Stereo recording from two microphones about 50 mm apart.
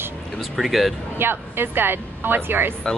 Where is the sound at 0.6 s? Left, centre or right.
Centre.